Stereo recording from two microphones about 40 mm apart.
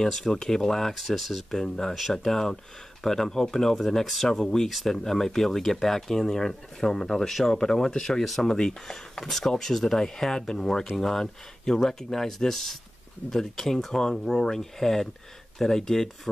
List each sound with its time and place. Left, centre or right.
0.3 s speech: centre
4.3 s speech: centre
8.2 s speech: centre